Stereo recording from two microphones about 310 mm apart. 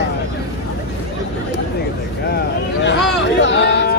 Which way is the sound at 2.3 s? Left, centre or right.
Left.